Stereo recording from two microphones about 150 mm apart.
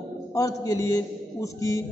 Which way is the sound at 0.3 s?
25° left (ahead or behind).